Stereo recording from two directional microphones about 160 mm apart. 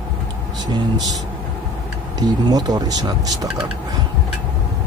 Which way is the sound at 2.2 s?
25° right (ahead or behind).